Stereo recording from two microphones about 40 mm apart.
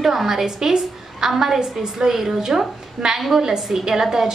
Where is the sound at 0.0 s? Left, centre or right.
Centre.